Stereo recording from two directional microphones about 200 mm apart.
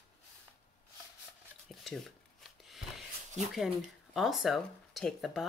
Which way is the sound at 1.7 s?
Centre (ahead or behind).